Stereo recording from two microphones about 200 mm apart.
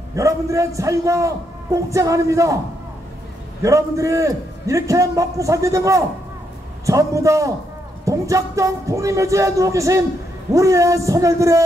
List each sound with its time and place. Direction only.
0.1 s a man's voice: 15° right (ahead or behind)
3.6 s a man's voice: 15° right (ahead or behind)